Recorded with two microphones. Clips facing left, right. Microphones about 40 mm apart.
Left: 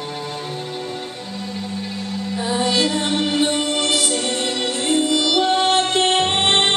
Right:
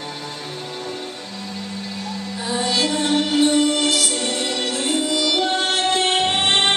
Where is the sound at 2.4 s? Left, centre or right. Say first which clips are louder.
Left 2 dB; centre.